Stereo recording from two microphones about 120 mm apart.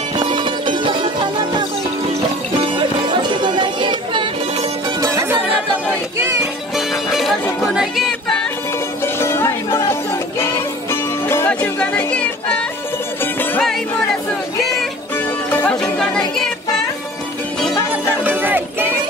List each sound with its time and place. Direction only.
0.2 s music: 45° right (ahead or behind)
2.6 s music: 45° right (ahead or behind)
5.0 s music: 25° right (ahead or behind)
6.4 s music: centre (ahead or behind)
9.0 s music: 20° left (ahead or behind)
15.1 s music: 20° left (ahead or behind)
15.8 s music: 5° left (ahead or behind)
18.2 s music: 15° right (ahead or behind)